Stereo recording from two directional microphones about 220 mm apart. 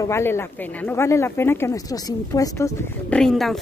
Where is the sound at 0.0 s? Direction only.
10° left (ahead or behind).